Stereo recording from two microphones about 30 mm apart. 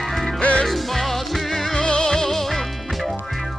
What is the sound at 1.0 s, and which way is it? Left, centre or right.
Music, centre.